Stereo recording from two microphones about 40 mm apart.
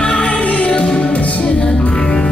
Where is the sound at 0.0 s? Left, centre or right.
Left.